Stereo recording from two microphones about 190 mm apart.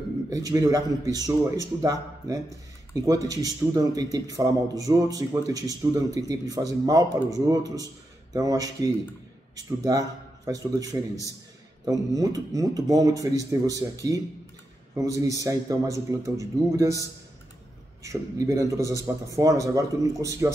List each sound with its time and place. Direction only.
0.3 s a man's voice: 20° right (ahead or behind)
18.0 s a man's voice: 15° right (ahead or behind)